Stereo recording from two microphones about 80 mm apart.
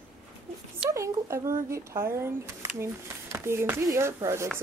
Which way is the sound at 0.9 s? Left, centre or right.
Right.